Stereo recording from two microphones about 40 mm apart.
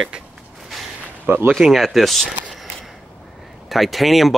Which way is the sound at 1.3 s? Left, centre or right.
Right.